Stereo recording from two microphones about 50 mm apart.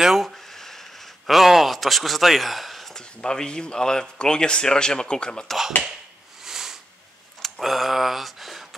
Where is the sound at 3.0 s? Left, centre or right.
Centre.